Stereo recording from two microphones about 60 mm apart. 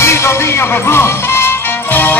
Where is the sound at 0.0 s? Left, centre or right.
Left.